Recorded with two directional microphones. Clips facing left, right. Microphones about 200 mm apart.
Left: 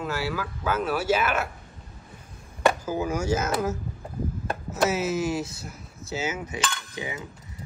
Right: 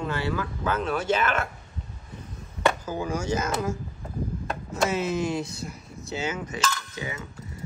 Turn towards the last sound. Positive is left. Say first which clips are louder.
# even
turn(degrees=15)  # may be behind; listen again after turning